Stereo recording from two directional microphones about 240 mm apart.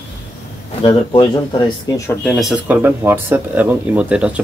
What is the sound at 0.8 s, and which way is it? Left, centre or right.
Speech, left.